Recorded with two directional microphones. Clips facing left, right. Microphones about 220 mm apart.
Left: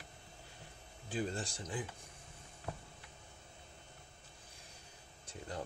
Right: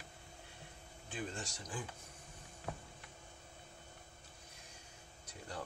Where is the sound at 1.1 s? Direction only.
35° left (ahead or behind).